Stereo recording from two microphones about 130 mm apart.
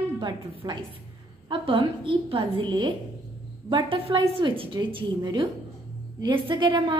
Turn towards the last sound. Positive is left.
turn(degrees=-35)  # may be behind; listen again after turning